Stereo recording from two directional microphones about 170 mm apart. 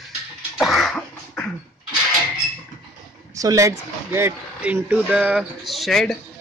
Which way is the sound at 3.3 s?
20° right (ahead or behind).